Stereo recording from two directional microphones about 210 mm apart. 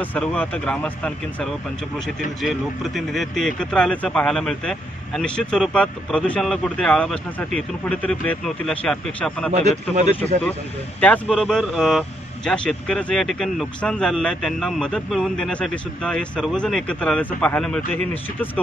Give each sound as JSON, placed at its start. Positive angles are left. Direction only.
{"t": 0.0, "sound": "speech", "side_deg": 5}
{"t": 9.5, "sound": "speech", "side_deg": -35}
{"t": 11.0, "sound": "speech", "side_deg": 5}